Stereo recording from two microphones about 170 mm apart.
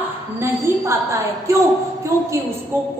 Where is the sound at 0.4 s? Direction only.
15° right (ahead or behind).